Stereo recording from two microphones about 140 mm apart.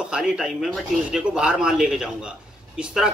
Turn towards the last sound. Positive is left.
turn(degrees=-5)  # may be behind; listen again after turning